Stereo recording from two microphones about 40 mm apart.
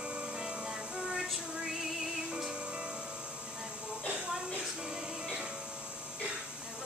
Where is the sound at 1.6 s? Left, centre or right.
Centre.